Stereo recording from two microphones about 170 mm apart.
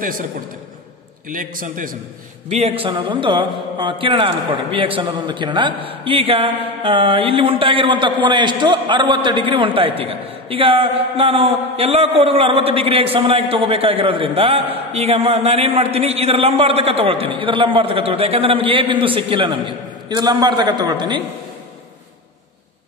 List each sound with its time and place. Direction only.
1.3 s a man's voice: 55° right (ahead or behind)
2.5 s a man's voice: 35° right (ahead or behind)
5.9 s mantra: 35° right (ahead or behind)